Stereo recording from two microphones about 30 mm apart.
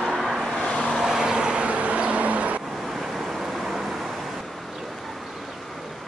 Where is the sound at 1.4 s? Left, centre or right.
Right.